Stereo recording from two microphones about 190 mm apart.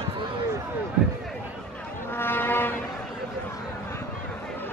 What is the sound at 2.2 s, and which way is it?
Brass instrument, 10° left (ahead or behind).